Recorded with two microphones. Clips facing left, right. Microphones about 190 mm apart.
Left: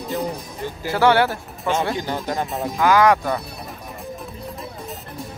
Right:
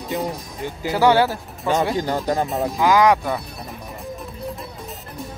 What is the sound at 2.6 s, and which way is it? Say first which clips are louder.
Speech: left 1 dB; 15° right (ahead or behind).